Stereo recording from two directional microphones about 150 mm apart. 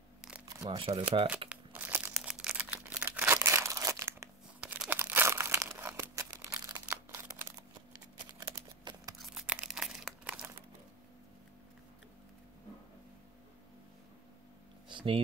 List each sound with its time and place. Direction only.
0.7 s speech: 35° right (ahead or behind)
1.5 s crumpling: 10° right (ahead or behind)
4.6 s crumpling: 10° right (ahead or behind)
7.9 s computer keyboard: 30° right (ahead or behind)
9.2 s crumpling: 5° right (ahead or behind)
14.9 s a sound: 30° right (ahead or behind)